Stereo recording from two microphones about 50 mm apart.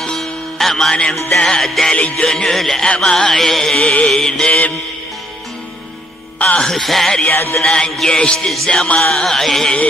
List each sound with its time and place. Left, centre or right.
0.0 s music: centre
2.0 s mantra: left
2.2 s music: centre
4.5 s mantra: left
6.4 s mantra: centre
6.7 s music: centre